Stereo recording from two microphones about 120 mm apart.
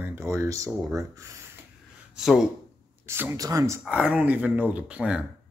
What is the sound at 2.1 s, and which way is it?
Speech, 5° right (ahead or behind).